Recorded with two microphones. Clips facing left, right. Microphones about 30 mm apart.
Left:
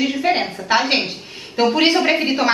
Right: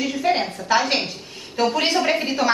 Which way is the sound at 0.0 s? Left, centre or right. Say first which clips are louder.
Left 3 dB; left.